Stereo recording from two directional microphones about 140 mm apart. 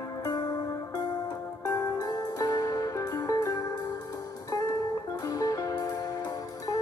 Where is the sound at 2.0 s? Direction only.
25° left (ahead or behind).